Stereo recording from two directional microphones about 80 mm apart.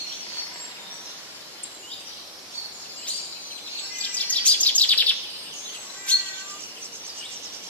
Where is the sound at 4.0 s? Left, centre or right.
Centre.